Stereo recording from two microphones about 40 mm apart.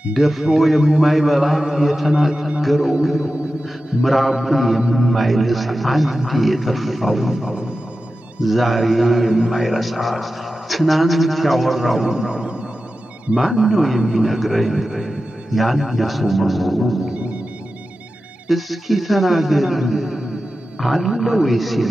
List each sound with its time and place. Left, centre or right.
0.1 s a man's voice: centre
13.4 s a man's voice: centre
14.9 s speech: centre
15.5 s a man's voice: centre
18.5 s a man's voice: centre